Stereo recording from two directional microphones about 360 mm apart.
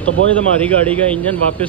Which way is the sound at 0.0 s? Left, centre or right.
Centre.